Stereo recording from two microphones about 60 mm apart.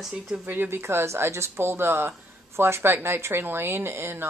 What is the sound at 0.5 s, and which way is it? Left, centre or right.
Speech, right.